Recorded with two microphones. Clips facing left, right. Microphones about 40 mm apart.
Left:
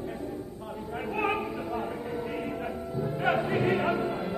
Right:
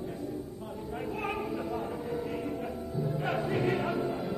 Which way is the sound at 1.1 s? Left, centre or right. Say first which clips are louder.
Left 7 dB; left.